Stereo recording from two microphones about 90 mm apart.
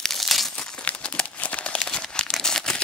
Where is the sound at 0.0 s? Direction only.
Centre (ahead or behind).